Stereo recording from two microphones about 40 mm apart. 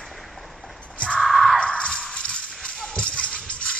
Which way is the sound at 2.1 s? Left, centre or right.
Left.